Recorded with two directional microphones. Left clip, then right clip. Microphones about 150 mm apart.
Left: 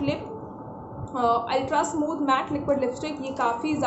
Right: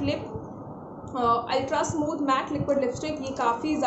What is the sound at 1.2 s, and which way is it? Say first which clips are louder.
A woman's voice: left 1 dB; 5° left (ahead or behind).